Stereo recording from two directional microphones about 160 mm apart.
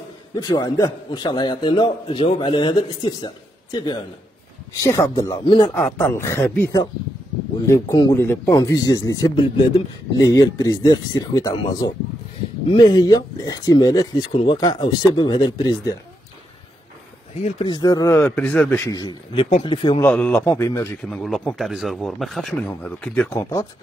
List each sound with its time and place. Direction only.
0.3 s speech: 25° left (ahead or behind)
5.8 s a man's voice: 15° left (ahead or behind)
7.6 s speech: 20° left (ahead or behind)
17.4 s speech: 45° left (ahead or behind)
17.6 s speech: 25° left (ahead or behind)
18.2 s a man's voice: 10° left (ahead or behind)
18.9 s a man's voice: 25° left (ahead or behind)
20.0 s a man's voice: 10° left (ahead or behind)
21.0 s a man's voice: 5° left (ahead or behind)